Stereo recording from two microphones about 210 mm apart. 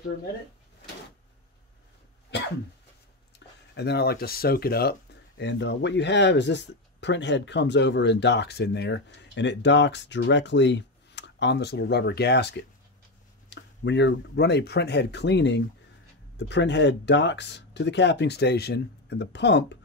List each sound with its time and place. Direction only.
3.3 s speech: 50° left (ahead or behind)
5.4 s speech: 55° left (ahead or behind)